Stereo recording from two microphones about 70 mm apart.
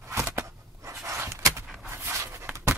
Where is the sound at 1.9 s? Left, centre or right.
Right.